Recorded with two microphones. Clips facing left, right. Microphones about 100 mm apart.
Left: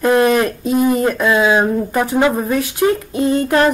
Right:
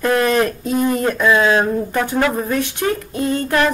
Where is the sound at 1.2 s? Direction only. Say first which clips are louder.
Even; 15° left (ahead or behind).